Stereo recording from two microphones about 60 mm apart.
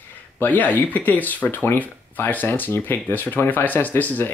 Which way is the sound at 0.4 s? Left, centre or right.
Left.